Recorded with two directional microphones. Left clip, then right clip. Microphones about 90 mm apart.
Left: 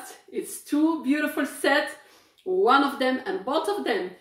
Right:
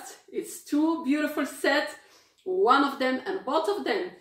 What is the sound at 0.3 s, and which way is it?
Speech, 25° left (ahead or behind).